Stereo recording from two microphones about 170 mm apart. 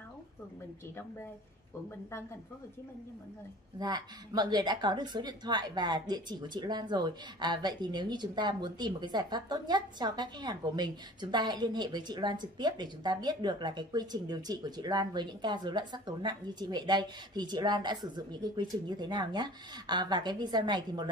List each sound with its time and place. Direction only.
3.8 s a woman's voice: 25° right (ahead or behind)